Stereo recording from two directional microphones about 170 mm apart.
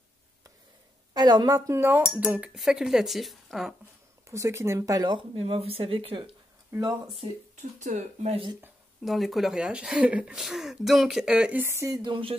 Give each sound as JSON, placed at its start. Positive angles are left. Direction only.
{"t": 1.1, "sound": "speech", "side_deg": -25}
{"t": 4.3, "sound": "speech", "side_deg": -15}
{"t": 6.7, "sound": "speech", "side_deg": -20}
{"t": 7.2, "sound": "speech", "side_deg": -45}
{"t": 9.0, "sound": "speech", "side_deg": 0}
{"t": 12.0, "sound": "speech", "side_deg": -30}